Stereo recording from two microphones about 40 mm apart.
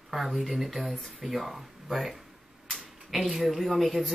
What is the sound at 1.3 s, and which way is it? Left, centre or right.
Speech, centre.